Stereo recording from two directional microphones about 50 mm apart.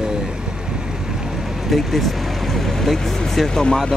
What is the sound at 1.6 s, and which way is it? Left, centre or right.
Speech, centre.